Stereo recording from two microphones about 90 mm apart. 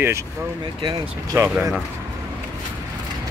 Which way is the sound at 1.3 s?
30° right (ahead or behind).